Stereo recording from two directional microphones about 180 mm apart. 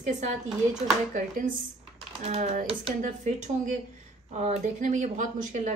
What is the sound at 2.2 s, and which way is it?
A woman's voice, 40° right (ahead or behind).